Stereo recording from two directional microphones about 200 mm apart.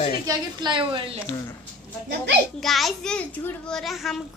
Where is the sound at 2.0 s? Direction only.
60° right (ahead or behind).